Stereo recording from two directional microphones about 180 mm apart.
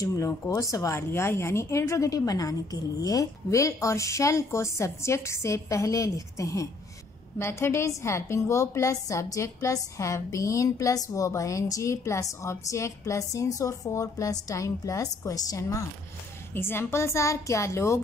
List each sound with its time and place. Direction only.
0.0 s speech: 15° left (ahead or behind)